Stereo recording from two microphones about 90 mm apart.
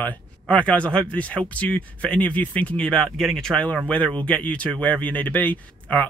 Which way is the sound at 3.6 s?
15° left (ahead or behind).